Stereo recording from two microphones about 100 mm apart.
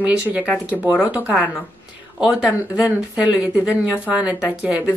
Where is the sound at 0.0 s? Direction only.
15° right (ahead or behind).